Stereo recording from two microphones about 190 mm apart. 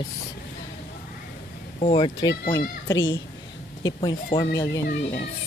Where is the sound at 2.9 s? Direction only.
75° left (ahead or behind).